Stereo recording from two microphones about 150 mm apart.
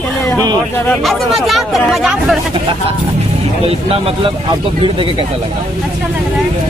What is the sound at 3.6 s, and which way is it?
Speech, 40° right (ahead or behind).